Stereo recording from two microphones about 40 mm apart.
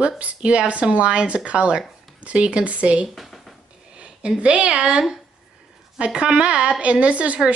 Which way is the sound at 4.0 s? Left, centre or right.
Right.